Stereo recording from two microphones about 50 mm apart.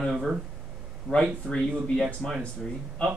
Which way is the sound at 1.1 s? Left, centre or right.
Centre.